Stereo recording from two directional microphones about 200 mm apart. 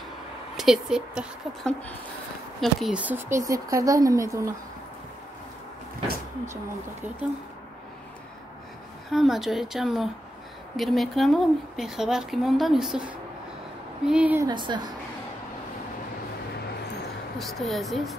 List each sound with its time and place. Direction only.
0.6 s a woman's voice: centre (ahead or behind)
6.5 s speech: 10° right (ahead or behind)
9.1 s a woman's voice: centre (ahead or behind)
14.5 s a woman's voice: 25° right (ahead or behind)
17.4 s a woman's voice: centre (ahead or behind)